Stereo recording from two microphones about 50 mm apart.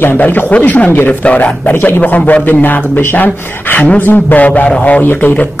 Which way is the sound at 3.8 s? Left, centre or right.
Left.